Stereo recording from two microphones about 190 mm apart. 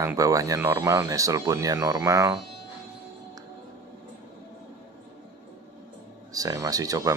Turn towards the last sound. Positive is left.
turn(degrees=-20)  # may be behind; listen again after turning